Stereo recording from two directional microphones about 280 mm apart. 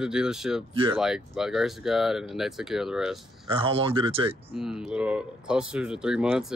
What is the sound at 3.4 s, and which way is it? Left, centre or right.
Speech, centre.